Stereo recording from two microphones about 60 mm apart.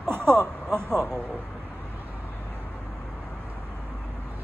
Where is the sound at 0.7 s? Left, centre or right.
Centre.